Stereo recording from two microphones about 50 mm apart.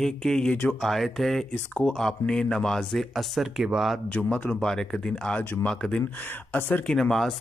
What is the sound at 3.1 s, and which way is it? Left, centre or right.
Speech, centre.